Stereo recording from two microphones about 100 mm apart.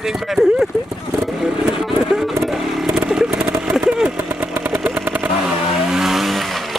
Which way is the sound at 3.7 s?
10° right (ahead or behind).